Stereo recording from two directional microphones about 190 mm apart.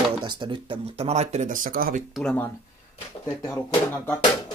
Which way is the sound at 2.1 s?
5° left (ahead or behind).